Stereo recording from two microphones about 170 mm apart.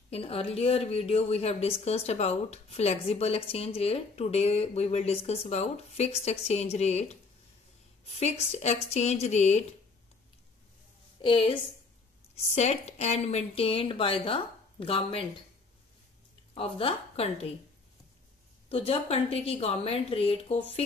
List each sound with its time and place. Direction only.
0.1 s a woman's voice: 35° left (ahead or behind)
8.2 s a woman's voice: 40° left (ahead or behind)
11.1 s a woman's voice: 30° left (ahead or behind)
16.5 s a woman's voice: 30° left (ahead or behind)
18.7 s a woman's voice: 35° left (ahead or behind)